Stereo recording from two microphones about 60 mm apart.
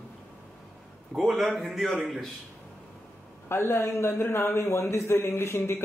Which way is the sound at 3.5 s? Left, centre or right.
Left.